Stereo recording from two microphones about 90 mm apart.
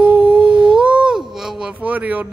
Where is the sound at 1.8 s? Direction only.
15° right (ahead or behind).